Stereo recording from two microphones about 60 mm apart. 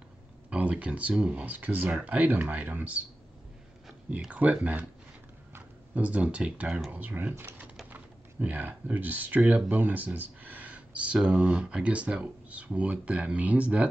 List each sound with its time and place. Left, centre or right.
0.5 s speech: right
4.3 s speech: right
5.9 s speech: right